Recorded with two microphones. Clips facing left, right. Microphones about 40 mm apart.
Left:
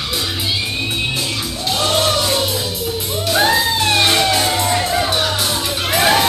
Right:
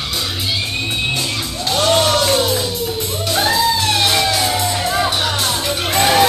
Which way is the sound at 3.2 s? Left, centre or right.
Left.